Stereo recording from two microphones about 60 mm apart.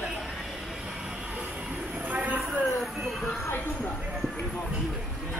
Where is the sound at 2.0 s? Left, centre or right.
Right.